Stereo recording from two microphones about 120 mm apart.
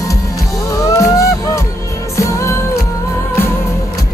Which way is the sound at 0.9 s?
25° left (ahead or behind).